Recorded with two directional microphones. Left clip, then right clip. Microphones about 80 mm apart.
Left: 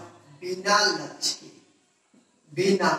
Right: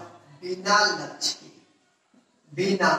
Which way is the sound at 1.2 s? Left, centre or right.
Right.